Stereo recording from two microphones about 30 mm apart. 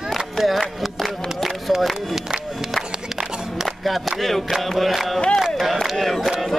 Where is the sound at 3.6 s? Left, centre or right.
Centre.